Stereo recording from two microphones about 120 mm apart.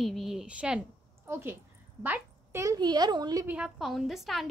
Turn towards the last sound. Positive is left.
turn(degrees=0)  # may be behind; listen again after turning